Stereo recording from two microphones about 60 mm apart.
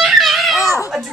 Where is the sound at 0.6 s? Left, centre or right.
Left.